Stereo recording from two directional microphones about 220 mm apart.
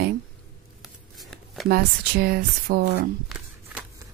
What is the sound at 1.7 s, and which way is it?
Speech, 45° right (ahead or behind).